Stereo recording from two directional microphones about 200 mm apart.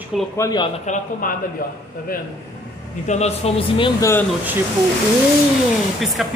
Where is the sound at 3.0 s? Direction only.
35° left (ahead or behind).